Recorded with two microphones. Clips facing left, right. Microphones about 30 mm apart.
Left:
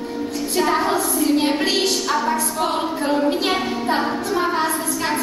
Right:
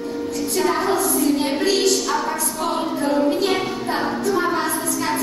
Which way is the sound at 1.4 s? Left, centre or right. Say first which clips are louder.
Even; left.